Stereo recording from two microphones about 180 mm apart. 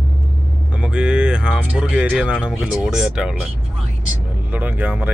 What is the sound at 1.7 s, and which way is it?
Speech, 5° right (ahead or behind).